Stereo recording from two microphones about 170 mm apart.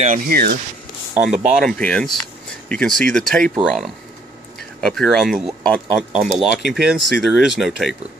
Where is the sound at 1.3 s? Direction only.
Centre (ahead or behind).